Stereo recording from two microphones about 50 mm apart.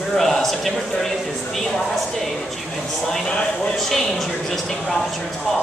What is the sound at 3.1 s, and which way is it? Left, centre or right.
Speech, centre.